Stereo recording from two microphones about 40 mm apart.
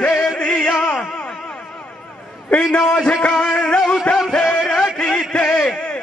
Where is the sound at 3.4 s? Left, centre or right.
Left.